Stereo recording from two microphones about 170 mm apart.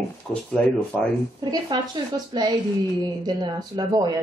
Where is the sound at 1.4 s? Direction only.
25° right (ahead or behind).